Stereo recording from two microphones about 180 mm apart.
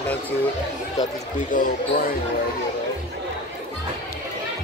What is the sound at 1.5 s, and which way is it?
Speech, 50° left (ahead or behind).